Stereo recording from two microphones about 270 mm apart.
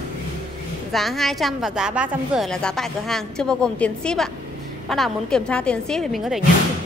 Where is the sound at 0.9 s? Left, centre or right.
Centre.